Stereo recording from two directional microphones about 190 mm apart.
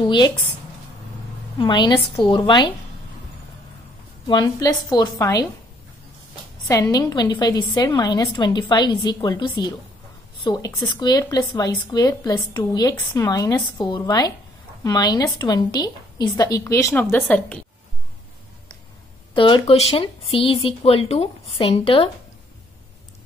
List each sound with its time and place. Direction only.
0.0 s a woman's voice: 25° left (ahead or behind)
1.6 s a woman's voice: 25° left (ahead or behind)
4.3 s a woman's voice: 25° left (ahead or behind)
6.7 s a woman's voice: 20° left (ahead or behind)
19.3 s speech: 25° left (ahead or behind)